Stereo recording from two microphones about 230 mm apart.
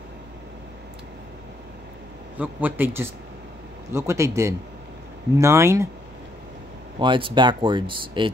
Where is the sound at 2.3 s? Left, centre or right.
Centre.